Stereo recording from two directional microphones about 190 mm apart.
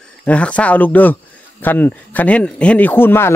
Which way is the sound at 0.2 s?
5° left (ahead or behind).